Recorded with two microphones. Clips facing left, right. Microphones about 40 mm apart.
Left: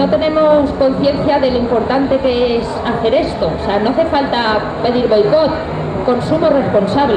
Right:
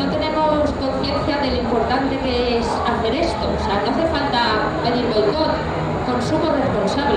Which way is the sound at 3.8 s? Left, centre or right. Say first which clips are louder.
Left 5 dB; left.